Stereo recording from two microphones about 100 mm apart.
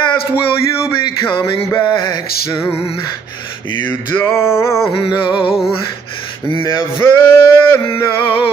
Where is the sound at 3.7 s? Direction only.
25° left (ahead or behind).